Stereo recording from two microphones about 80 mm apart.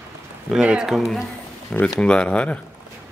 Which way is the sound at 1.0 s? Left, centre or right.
Centre.